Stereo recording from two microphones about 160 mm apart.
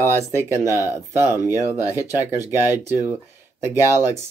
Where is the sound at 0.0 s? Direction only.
15° right (ahead or behind).